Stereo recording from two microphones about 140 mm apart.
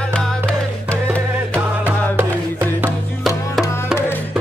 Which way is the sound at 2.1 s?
15° right (ahead or behind).